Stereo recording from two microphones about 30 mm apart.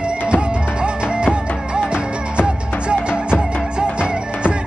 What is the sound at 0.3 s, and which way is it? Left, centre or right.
Music, right.